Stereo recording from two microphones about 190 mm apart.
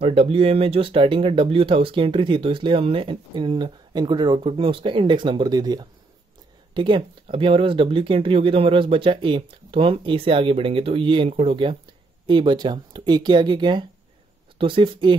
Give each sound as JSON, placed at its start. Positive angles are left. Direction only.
{"t": 0.0, "sound": "speech", "side_deg": -30}